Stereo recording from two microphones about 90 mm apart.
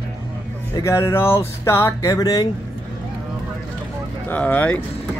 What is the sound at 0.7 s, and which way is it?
Speech, 30° left (ahead or behind).